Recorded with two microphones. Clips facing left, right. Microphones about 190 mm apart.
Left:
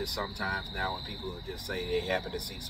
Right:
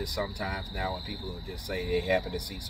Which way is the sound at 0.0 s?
15° right (ahead or behind).